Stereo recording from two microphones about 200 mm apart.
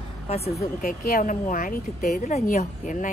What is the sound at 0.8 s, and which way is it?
Speech, 45° left (ahead or behind).